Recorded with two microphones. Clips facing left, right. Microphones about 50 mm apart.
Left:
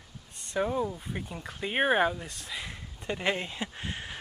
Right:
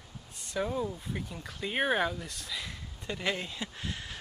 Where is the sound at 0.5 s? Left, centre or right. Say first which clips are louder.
Left 3 dB; centre.